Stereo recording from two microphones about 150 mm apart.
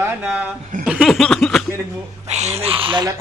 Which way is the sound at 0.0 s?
10° right (ahead or behind).